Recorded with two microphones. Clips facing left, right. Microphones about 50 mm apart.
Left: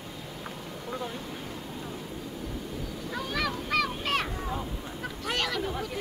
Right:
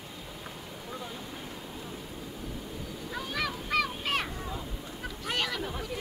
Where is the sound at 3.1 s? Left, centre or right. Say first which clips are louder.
Left 2 dB; centre.